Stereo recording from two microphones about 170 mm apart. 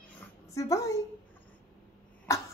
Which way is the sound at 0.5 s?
20° left (ahead or behind).